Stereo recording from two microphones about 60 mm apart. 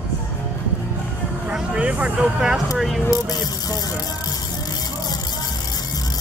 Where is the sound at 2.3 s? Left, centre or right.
Centre.